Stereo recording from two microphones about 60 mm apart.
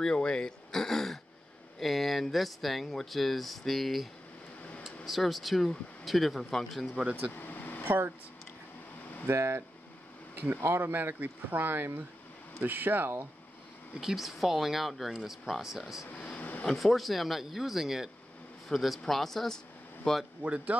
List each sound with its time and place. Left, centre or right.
0.0 s speech: centre
7.0 s speech: centre
7.3 s air conditioning: left
7.8 s speech: right
9.3 s speech: right
10.3 s speech: right
10.6 s speech: right
13.9 s speech: centre
16.1 s a sound: centre
16.6 s speech: centre
20.4 s speech: right